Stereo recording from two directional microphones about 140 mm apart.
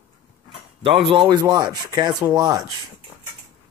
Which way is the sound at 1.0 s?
35° right (ahead or behind).